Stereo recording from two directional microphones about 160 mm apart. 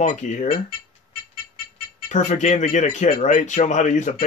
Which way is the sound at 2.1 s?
50° left (ahead or behind).